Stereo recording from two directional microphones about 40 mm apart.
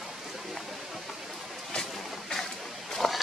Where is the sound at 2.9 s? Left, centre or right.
Centre.